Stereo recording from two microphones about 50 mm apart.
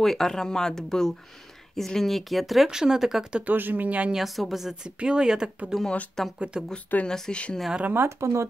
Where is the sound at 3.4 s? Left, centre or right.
Right.